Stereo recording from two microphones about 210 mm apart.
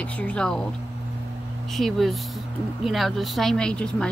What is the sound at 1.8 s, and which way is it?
Speech, centre (ahead or behind).